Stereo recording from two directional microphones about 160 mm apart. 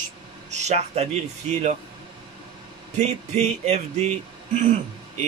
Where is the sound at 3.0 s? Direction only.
45° right (ahead or behind).